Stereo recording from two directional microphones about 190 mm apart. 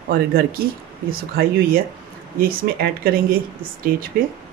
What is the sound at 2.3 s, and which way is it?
Speech, 55° right (ahead or behind).